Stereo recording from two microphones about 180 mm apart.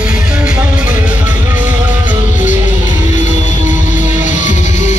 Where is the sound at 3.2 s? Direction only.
45° left (ahead or behind).